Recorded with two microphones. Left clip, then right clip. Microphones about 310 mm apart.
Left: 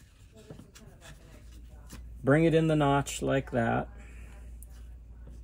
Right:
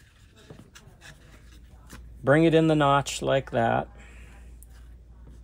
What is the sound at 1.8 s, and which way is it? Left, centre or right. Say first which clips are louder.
Speech: right 5 dB; centre.